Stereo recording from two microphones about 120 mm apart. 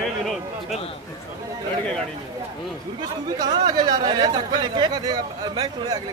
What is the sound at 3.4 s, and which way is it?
Speech, 35° right (ahead or behind).